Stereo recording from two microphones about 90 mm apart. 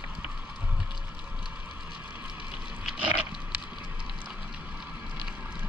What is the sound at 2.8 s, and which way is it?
Pig, 10° right (ahead or behind).